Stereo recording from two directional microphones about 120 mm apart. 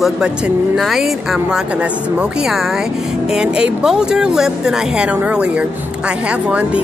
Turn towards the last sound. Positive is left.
turn(degrees=-10)  # may be behind; listen again after turning